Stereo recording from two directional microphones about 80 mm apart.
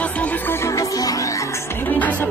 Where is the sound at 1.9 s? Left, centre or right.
Left.